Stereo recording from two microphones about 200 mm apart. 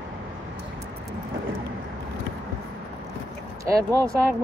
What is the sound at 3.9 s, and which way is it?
Speech, 15° right (ahead or behind).